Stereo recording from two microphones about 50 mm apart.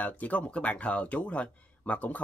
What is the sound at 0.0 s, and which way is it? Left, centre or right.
Speech, left.